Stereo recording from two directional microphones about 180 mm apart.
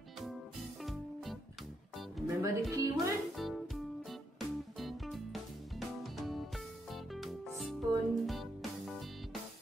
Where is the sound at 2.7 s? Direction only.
20° right (ahead or behind).